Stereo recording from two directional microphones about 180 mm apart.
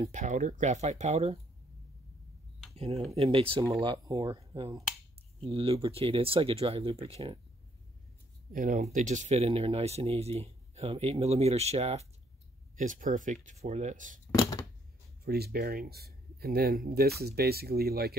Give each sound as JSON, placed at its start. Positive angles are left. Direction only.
{"t": 0.0, "sound": "speech", "side_deg": -40}
{"t": 2.7, "sound": "speech", "side_deg": -35}
{"t": 8.5, "sound": "speech", "side_deg": -50}
{"t": 15.2, "sound": "speech", "side_deg": -60}